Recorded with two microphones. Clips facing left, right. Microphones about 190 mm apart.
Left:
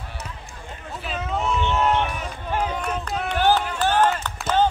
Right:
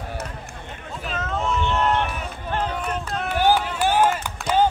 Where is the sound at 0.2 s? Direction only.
60° right (ahead or behind).